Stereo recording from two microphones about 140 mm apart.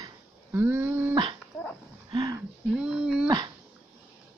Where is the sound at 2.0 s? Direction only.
30° right (ahead or behind).